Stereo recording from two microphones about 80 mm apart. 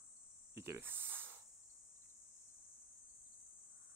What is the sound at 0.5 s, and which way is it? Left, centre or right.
Snake, right.